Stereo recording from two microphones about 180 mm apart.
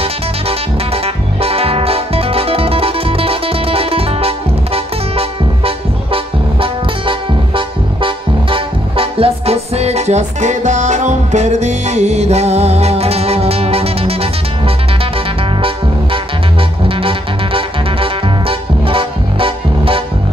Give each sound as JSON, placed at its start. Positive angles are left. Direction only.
{"t": 1.0, "sound": "music", "side_deg": -35}
{"t": 16.8, "sound": "music", "side_deg": -30}